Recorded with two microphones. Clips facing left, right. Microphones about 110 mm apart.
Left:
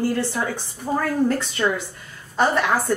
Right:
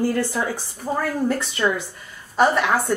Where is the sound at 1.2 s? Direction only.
Centre (ahead or behind).